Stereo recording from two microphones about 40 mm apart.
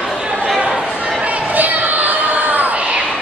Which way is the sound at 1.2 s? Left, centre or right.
Right.